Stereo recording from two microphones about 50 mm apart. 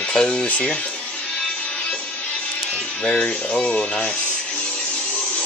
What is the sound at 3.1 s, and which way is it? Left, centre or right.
Speech, left.